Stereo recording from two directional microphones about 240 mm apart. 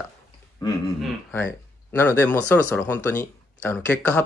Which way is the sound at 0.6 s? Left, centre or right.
Centre.